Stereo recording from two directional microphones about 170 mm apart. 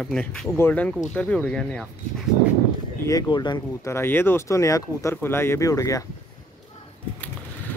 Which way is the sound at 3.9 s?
15° left (ahead or behind).